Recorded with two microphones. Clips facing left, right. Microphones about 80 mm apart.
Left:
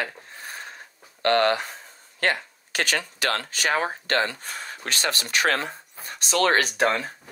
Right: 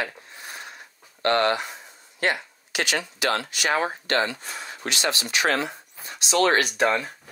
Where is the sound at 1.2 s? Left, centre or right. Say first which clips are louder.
Left 1 dB; right.